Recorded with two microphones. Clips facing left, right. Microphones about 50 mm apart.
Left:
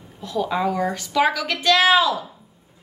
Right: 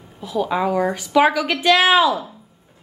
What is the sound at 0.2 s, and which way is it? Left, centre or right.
A woman's voice, centre.